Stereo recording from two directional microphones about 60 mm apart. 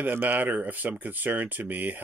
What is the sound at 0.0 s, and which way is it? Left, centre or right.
Speech, right.